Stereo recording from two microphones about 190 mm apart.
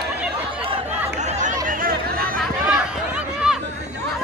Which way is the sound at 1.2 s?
40° right (ahead or behind).